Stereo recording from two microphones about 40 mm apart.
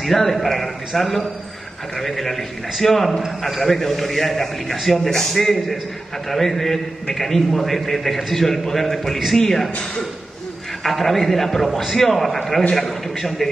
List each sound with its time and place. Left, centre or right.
0.0 s a man's voice: centre
10.8 s a man's voice: centre